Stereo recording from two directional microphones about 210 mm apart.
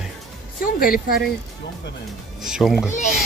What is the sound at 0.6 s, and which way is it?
Speech, 45° left (ahead or behind).